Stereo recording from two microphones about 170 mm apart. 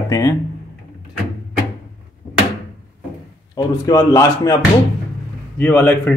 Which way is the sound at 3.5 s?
20° left (ahead or behind).